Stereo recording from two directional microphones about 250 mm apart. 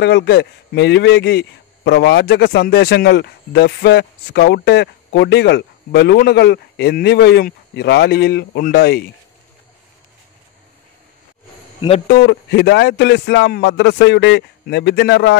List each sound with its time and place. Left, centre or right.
0.0 s a man's voice: left
12.1 s speech: left